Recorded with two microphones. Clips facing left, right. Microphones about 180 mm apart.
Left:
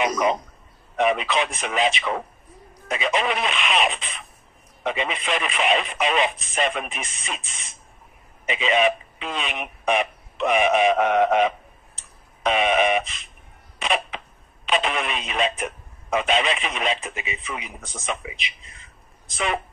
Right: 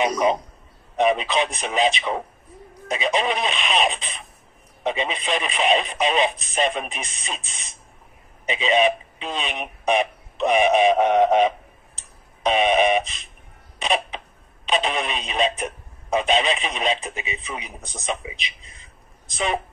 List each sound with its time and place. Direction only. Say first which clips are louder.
0.0 s speech: right 2 dB; 30° right (ahead or behind)
6.9 s speech: even; 35° right (ahead or behind)
8.5 s speech: right 1 dB; 25° right (ahead or behind)
13.8 s a sound: right 1 dB; 25° right (ahead or behind)
14.7 s speech: right 1 dB; 25° right (ahead or behind)